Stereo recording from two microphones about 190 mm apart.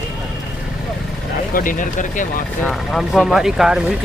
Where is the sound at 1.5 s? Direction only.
45° left (ahead or behind).